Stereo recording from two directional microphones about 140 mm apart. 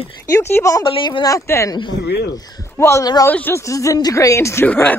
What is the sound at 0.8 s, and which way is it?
Speech, 35° left (ahead or behind).